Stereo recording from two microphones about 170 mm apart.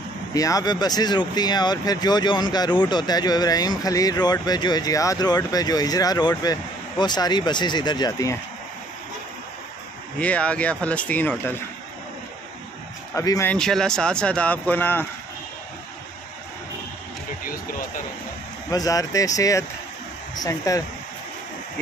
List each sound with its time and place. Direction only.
0.3 s speech: 20° left (ahead or behind)
10.1 s speech: 5° left (ahead or behind)
13.1 s speech: 20° left (ahead or behind)
13.5 s speech: 5° left (ahead or behind)
18.7 s speech: 20° left (ahead or behind)